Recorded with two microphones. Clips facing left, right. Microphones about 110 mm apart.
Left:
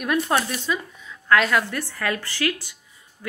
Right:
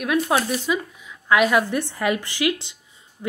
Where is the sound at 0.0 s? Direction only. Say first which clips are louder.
Right 1 dB; 5° right (ahead or behind).